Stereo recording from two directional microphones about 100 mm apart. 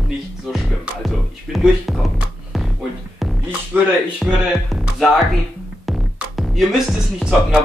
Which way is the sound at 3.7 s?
20° right (ahead or behind).